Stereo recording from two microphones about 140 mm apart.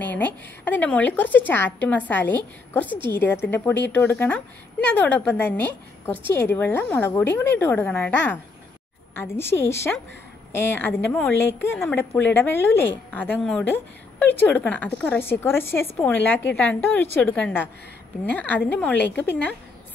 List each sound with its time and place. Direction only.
0.0 s speech: 10° left (ahead or behind)